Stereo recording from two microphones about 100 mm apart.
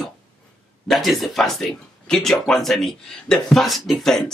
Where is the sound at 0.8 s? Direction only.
Centre (ahead or behind).